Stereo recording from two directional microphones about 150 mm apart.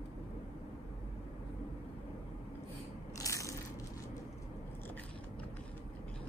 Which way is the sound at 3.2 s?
20° left (ahead or behind).